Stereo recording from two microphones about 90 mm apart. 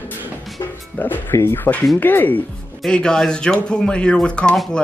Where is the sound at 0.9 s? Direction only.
20° left (ahead or behind).